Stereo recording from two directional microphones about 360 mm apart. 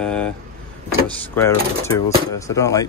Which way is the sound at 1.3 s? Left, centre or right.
Centre.